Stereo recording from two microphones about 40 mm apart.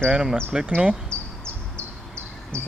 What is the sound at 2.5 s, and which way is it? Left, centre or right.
Cricket, left.